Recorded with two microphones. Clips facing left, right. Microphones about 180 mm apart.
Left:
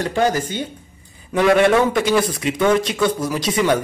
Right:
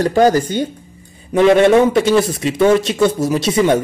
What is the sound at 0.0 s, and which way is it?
Speech, 40° right (ahead or behind).